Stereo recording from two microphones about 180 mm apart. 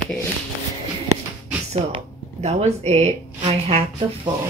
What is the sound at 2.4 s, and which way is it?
Speech, 40° right (ahead or behind).